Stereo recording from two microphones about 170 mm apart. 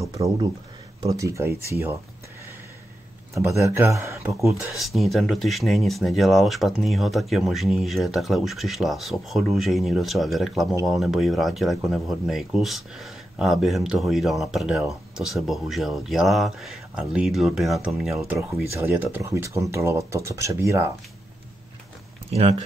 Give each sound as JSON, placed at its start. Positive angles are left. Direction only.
{"t": 0.2, "sound": "speech", "side_deg": -35}
{"t": 1.0, "sound": "speech", "side_deg": -20}
{"t": 3.6, "sound": "speech", "side_deg": -15}
{"t": 4.5, "sound": "speech", "side_deg": 0}